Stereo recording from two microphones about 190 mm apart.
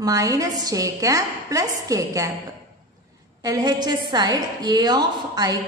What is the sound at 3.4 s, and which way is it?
A woman's voice, 20° right (ahead or behind).